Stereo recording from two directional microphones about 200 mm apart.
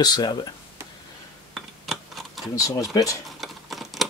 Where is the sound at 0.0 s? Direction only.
20° left (ahead or behind).